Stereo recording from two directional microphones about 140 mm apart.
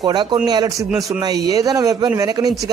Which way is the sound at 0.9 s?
5° right (ahead or behind).